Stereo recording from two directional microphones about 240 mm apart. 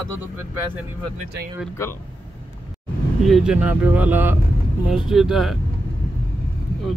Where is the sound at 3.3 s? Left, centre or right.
Centre.